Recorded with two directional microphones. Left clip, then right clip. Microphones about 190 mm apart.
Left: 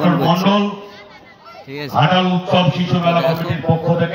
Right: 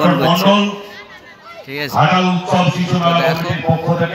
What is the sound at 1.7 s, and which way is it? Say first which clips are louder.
Speech: right 3 dB; 5° left (ahead or behind).